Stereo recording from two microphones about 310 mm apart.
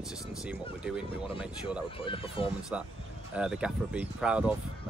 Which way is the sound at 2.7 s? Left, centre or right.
Centre.